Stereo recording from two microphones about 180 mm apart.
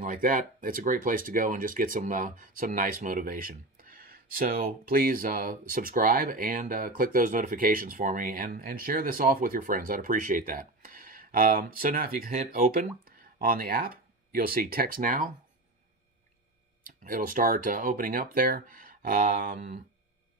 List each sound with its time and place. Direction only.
0.0 s speech: 50° right (ahead or behind)
16.8 s speech: 50° right (ahead or behind)